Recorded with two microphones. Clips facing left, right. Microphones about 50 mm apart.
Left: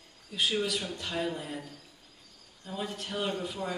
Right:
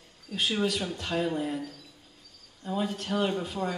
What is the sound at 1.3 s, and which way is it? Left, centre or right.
Speech, right.